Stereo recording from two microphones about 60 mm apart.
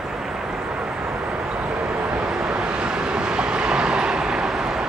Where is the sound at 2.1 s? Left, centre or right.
Centre.